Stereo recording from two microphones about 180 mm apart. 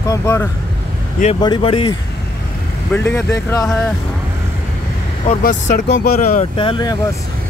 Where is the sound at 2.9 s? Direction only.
10° left (ahead or behind).